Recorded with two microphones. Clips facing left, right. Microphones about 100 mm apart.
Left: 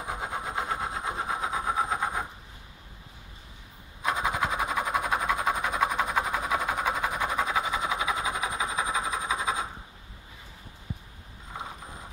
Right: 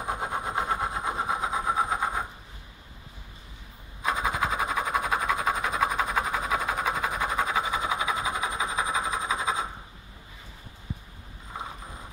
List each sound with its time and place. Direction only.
0.5 s train: 35° right (ahead or behind)
1.3 s train: 10° right (ahead or behind)
4.0 s a sound: centre (ahead or behind)